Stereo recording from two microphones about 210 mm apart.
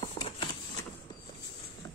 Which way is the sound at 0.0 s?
25° left (ahead or behind).